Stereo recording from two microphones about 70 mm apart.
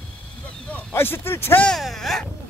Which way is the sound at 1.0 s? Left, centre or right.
Left.